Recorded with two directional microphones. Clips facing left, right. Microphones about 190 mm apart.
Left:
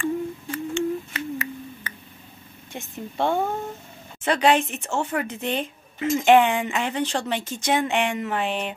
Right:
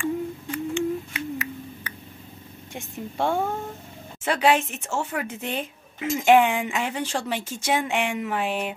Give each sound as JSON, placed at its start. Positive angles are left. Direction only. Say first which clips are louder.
{"t": 0.0, "sound": "humming", "louder": "left 1 dB", "side_deg": -15}
{"t": 2.7, "sound": "speech", "louder": "even", "side_deg": -10}